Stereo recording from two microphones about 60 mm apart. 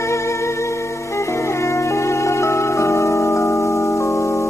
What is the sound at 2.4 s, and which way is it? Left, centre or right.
Music, left.